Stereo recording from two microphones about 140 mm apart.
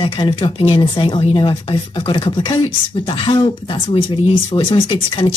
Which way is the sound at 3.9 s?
40° left (ahead or behind).